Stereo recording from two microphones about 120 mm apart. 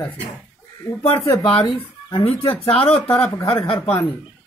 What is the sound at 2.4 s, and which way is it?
Speech, 55° left (ahead or behind).